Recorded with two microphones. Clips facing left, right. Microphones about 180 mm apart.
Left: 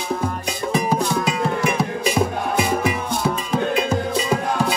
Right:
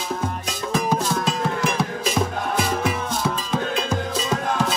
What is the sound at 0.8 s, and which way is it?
Music, 15° left (ahead or behind).